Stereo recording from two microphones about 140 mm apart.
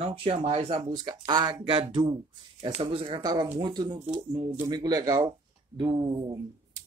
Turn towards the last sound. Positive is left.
turn(degrees=-30)  # may be behind; listen again after turning